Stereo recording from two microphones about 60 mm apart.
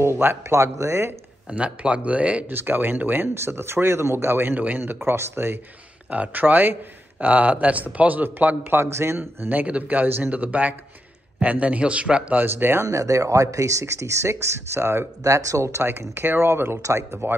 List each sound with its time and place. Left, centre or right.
0.0 s speech: right
1.5 s speech: right
2.5 s speech: right
4.6 s speech: right
6.0 s speech: right
9.5 s speech: right
10.3 s speech: right
12.4 s speech: right
12.8 s speech: right
15.2 s speech: right